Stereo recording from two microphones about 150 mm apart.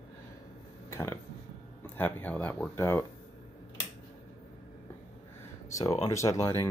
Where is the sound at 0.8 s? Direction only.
20° left (ahead or behind).